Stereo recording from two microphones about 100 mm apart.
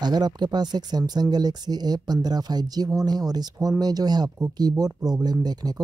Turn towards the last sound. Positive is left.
turn(degrees=-40)  # may be behind; listen again after turning